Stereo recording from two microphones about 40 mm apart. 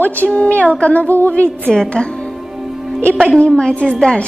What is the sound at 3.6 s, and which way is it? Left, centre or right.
Speech, left.